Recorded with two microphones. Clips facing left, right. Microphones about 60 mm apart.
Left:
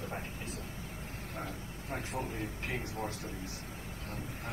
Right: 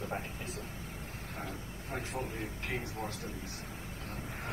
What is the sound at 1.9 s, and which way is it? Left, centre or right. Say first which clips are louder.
Speech: even; left.